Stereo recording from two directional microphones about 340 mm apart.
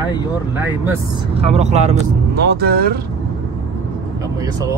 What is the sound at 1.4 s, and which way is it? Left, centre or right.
Speech, centre.